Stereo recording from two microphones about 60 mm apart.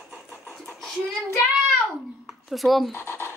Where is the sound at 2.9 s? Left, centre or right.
Left.